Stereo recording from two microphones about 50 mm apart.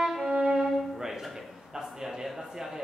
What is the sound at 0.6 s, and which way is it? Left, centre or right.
Music, centre.